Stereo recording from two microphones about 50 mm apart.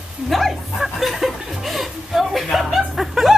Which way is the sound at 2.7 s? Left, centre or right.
Centre.